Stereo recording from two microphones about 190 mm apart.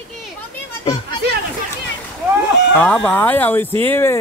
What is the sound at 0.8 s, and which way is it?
Speech, 25° left (ahead or behind).